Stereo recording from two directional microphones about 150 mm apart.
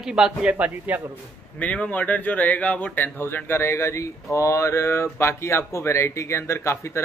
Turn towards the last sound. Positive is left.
turn(degrees=20)  # may be behind; listen again after turning